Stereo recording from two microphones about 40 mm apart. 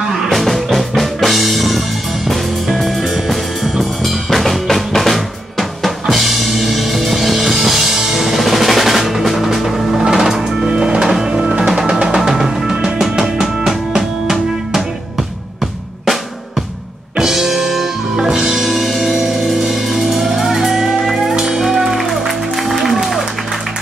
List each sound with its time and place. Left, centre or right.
0.0 s music: centre
0.3 s music: centre
10.7 s music: centre
12.2 s drum: centre
17.2 s music: centre